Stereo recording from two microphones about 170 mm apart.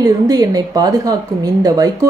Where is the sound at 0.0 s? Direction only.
20° right (ahead or behind).